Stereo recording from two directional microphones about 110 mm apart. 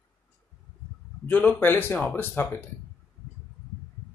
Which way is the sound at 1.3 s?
15° left (ahead or behind).